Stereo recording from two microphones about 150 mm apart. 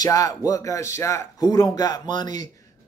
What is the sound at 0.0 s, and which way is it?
Speech, 25° left (ahead or behind).